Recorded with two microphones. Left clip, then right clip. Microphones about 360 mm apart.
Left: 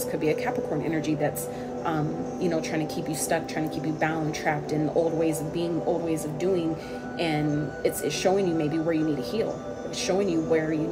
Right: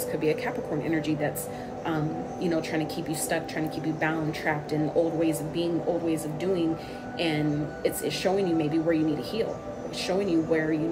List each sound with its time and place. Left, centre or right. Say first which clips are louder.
0.1 s a woman's voice: left 1 dB; centre
2.4 s a woman's voice: left 1 dB; centre